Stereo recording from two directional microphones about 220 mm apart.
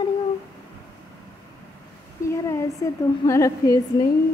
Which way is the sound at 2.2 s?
15° left (ahead or behind).